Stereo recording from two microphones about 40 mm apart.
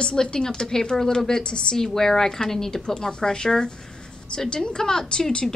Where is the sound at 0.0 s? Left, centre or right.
Centre.